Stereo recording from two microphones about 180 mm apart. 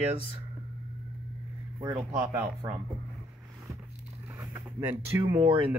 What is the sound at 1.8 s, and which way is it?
Speech, 20° right (ahead or behind).